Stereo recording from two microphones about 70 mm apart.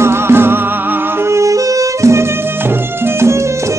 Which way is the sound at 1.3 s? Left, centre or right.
Right.